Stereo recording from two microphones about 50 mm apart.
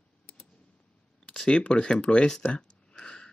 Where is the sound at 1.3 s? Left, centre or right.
Centre.